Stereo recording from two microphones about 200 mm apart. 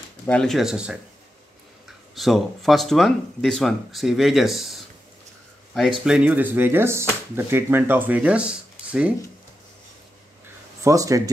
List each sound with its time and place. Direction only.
0.3 s speech: centre (ahead or behind)
6.0 s speech: 5° right (ahead or behind)
10.8 s speech: 15° right (ahead or behind)